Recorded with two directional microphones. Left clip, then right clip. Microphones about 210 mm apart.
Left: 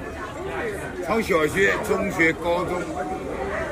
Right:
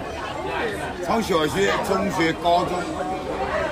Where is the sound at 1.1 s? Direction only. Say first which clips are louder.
Even; 25° right (ahead or behind).